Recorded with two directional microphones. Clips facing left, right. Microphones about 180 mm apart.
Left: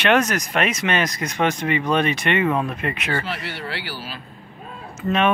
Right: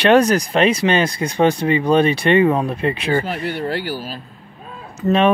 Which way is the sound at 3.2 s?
45° right (ahead or behind).